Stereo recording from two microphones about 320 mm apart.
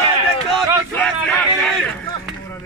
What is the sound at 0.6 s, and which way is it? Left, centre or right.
Speech, centre.